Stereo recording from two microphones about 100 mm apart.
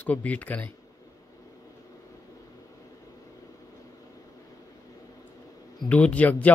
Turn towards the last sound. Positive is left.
turn(degrees=15)  # may be behind; listen again after turning